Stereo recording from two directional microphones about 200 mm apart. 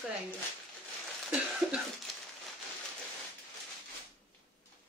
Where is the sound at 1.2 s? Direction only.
5° right (ahead or behind).